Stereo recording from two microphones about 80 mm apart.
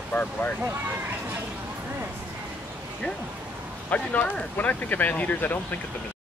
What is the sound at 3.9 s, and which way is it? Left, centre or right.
Speech, centre.